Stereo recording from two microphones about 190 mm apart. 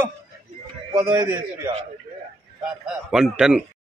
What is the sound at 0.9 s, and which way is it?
Speech, 20° right (ahead or behind).